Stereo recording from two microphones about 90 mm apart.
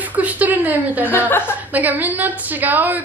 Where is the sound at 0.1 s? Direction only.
15° right (ahead or behind).